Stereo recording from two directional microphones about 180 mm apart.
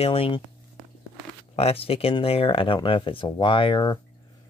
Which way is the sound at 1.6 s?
35° left (ahead or behind).